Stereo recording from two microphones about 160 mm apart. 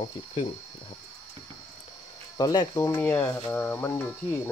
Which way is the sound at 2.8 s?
15° left (ahead or behind).